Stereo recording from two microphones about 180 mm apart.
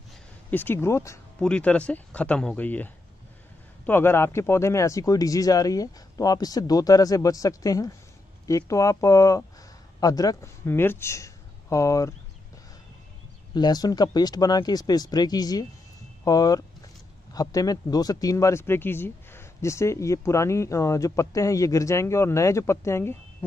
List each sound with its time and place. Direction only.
0.5 s speech: 10° left (ahead or behind)
13.6 s speech: 20° left (ahead or behind)